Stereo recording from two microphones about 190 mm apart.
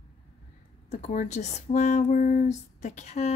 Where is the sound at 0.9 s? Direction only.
40° left (ahead or behind).